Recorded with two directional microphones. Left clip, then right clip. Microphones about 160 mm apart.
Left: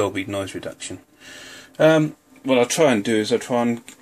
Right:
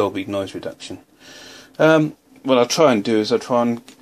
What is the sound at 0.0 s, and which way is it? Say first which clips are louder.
Speech: right 2 dB; 5° right (ahead or behind).